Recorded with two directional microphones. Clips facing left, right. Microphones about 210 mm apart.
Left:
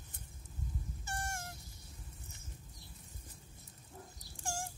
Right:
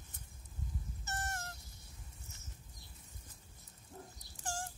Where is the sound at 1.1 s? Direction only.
10° left (ahead or behind).